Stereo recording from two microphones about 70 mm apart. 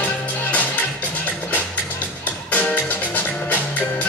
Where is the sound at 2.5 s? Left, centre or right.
Centre.